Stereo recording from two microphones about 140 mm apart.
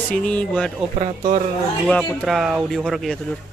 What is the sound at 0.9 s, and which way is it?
Speech, 50° right (ahead or behind).